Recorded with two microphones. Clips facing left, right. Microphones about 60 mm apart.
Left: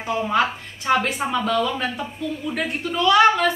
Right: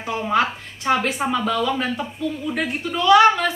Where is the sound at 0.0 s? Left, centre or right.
Centre.